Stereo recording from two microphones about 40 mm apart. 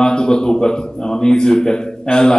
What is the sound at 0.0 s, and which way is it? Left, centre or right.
A man's voice, centre.